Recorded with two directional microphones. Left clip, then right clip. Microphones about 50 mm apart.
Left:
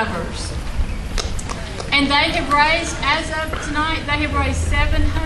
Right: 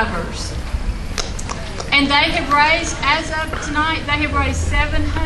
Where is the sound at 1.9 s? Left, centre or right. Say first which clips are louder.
Right 2 dB; right.